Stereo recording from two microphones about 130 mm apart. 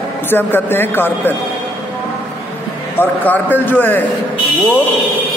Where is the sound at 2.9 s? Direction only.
15° left (ahead or behind).